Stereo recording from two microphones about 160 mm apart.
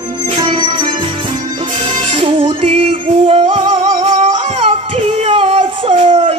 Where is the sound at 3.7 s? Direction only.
25° right (ahead or behind).